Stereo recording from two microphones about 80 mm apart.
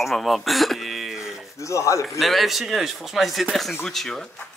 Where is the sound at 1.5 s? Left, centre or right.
Left.